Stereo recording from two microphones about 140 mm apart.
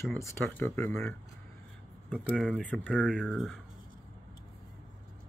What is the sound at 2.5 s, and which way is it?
Speech, 10° left (ahead or behind).